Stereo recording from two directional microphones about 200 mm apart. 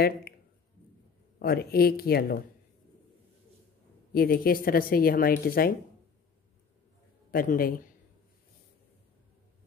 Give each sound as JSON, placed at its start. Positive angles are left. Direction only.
{"t": 1.4, "sound": "speech", "side_deg": 50}
{"t": 4.1, "sound": "speech", "side_deg": 50}
{"t": 7.2, "sound": "speech", "side_deg": 45}